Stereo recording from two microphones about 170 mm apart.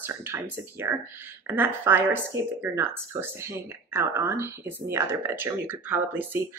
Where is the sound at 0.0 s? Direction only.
15° right (ahead or behind).